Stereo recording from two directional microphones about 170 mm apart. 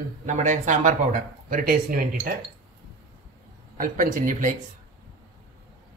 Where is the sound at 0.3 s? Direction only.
45° right (ahead or behind).